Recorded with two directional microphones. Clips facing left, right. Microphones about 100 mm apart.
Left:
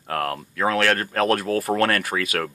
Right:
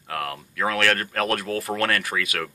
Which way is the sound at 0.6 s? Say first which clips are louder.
Left 2 dB; 30° left (ahead or behind).